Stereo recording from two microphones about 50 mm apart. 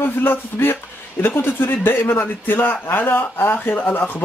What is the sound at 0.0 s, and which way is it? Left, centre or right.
Speech, left.